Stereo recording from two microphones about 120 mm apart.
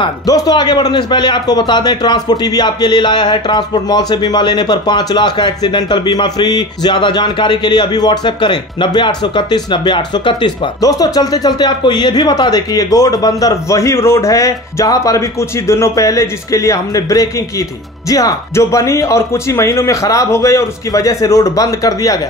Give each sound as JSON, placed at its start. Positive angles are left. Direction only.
{"t": 0.3, "sound": "a man's voice", "side_deg": 35}